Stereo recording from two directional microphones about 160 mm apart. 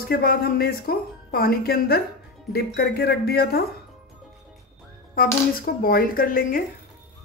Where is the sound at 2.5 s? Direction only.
90° left.